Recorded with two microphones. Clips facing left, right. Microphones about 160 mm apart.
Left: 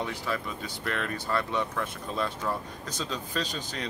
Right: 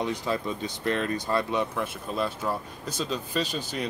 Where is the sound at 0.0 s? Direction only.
20° right (ahead or behind).